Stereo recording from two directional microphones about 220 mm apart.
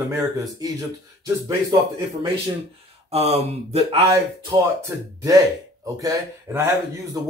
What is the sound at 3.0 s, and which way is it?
Speech, 30° right (ahead or behind).